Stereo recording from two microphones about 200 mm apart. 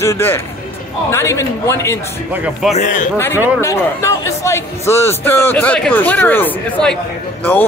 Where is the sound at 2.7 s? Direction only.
40° left (ahead or behind).